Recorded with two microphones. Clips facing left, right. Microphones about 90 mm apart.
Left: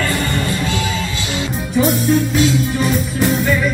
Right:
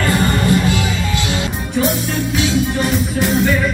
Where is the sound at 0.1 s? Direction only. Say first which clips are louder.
Right 4 dB; 25° right (ahead or behind).